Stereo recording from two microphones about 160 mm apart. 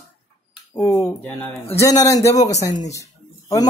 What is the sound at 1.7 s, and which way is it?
A man's voice, 20° left (ahead or behind).